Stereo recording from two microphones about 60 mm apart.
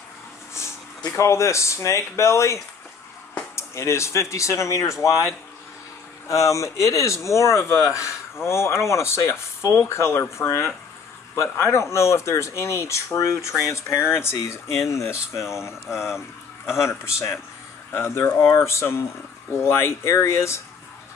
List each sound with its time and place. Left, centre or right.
1.1 s speech: left
6.2 s speech: left